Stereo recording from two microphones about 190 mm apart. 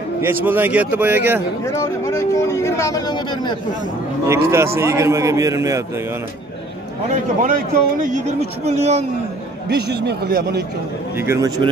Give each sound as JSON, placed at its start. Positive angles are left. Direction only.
{"t": 0.2, "sound": "a man's voice", "side_deg": -10}
{"t": 1.6, "sound": "speech", "side_deg": 15}
{"t": 4.3, "sound": "a man's voice", "side_deg": -15}
{"t": 7.4, "sound": "a man's voice", "side_deg": -45}
{"t": 9.7, "sound": "speech", "side_deg": -60}
{"t": 11.1, "sound": "a man's voice", "side_deg": -15}